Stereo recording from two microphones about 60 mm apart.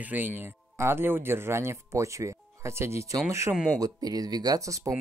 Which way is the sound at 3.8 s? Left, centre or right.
Right.